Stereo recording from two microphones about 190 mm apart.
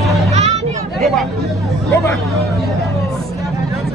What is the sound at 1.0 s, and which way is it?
Chatter, centre (ahead or behind).